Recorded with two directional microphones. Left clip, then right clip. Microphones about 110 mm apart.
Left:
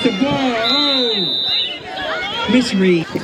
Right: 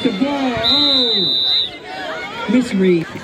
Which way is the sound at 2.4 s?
30° left (ahead or behind).